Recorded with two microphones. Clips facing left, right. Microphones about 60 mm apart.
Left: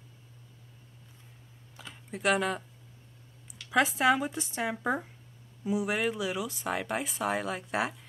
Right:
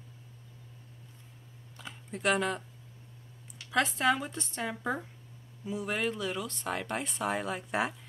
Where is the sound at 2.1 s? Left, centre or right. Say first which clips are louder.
Left 1 dB; centre.